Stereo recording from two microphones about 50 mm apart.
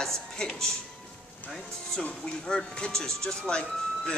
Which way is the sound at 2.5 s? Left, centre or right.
Centre.